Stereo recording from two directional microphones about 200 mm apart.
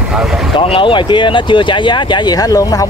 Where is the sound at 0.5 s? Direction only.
25° left (ahead or behind).